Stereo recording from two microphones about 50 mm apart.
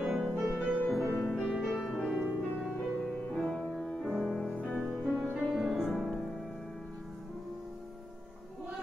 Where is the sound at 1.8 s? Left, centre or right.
Centre.